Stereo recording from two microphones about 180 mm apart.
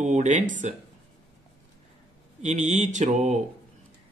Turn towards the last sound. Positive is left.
turn(degrees=-40)  # may be behind; listen again after turning